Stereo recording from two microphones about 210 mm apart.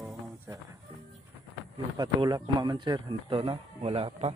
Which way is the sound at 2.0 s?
20° right (ahead or behind).